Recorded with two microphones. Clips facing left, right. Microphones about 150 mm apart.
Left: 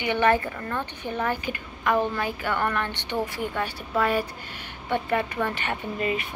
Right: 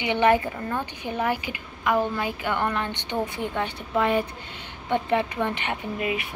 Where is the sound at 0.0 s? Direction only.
15° right (ahead or behind).